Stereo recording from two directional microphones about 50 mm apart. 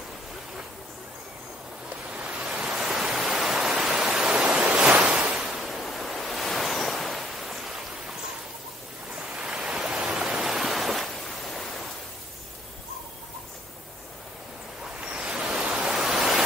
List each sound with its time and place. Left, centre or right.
2.3 s waves: right
2.6 s waves: centre
3.0 s waterfall: centre
4.5 s waves: right
5.1 s a sound: centre
5.6 s waves: centre
9.1 s waves: right
10.3 s ocean: centre
15.0 s a sound: centre